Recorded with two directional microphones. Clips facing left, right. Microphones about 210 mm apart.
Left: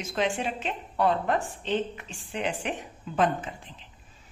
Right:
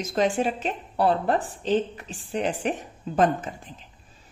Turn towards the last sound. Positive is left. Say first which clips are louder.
# right 2 dB
turn(degrees=-45)  # may be behind; listen again after turning